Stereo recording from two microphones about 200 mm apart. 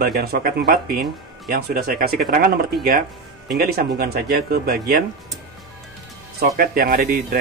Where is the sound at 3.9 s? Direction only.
50° right (ahead or behind).